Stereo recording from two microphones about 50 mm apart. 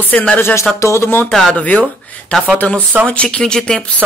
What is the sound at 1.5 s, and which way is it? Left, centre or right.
Speech, left.